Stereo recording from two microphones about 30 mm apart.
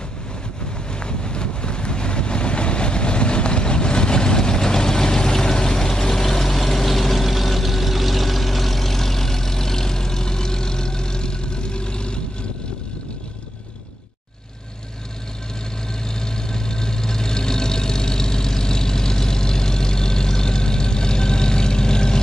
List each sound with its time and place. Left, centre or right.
0.9 s vehicle: left
16.3 s vehicle: left